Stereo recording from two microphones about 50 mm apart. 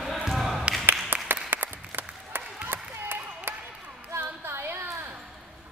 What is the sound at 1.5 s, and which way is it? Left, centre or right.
Applause, right.